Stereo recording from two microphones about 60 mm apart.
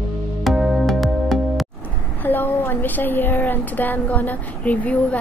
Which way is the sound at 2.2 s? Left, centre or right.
Left.